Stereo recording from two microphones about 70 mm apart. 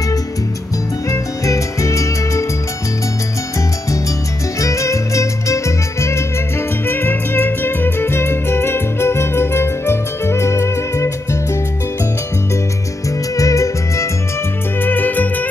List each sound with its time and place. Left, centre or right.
1.1 s music: left
4.6 s music: left
13.4 s music: left
14.8 s music: left